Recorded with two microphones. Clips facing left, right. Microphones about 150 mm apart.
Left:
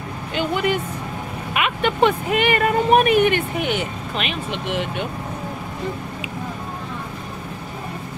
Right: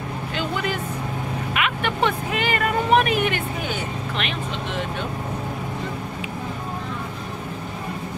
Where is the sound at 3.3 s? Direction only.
70° left (ahead or behind).